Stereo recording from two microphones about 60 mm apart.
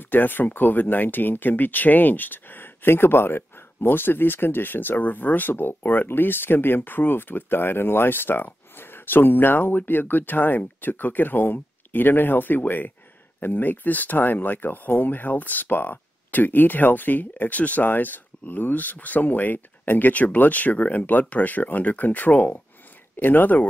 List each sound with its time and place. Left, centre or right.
0.0 s speech: left